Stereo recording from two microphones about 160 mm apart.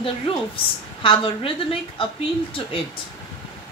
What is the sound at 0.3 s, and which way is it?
A woman's voice, 35° left (ahead or behind).